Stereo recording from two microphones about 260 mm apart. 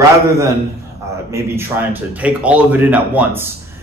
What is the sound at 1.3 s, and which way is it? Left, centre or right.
A man's voice, centre.